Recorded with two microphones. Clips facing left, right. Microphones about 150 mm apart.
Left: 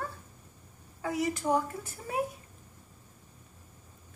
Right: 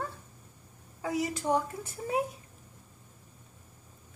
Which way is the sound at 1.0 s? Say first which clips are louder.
Left 1 dB; 20° right (ahead or behind).